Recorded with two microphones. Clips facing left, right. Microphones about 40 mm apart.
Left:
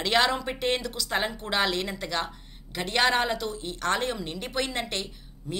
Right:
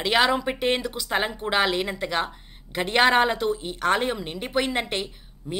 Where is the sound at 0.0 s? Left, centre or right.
Centre.